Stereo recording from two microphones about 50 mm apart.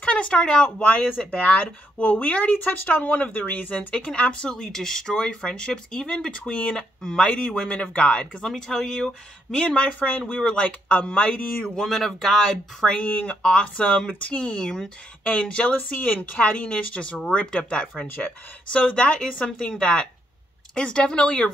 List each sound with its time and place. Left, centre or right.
0.0 s speech: left
1.3 s speech: left
4.1 s speech: left
4.6 s speech: centre
8.5 s speech: centre
9.6 s speech: centre
11.7 s speech: centre
12.9 s speech: left
13.4 s speech: centre
15.7 s speech: left